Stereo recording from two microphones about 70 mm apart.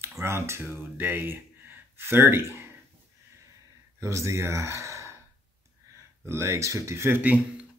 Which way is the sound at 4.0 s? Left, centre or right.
Right.